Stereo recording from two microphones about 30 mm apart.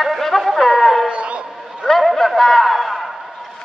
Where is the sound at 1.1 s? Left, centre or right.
Right.